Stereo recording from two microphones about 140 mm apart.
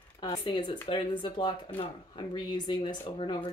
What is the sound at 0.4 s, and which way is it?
Speech, 35° left (ahead or behind).